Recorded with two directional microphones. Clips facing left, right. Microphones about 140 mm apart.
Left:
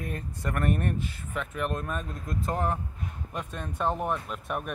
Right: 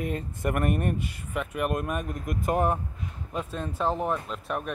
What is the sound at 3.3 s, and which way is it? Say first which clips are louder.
Speech: right 5 dB; 5° right (ahead or behind).